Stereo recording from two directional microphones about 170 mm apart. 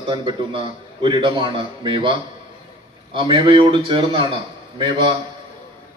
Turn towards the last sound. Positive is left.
turn(degrees=-30)  # may be behind; listen again after turning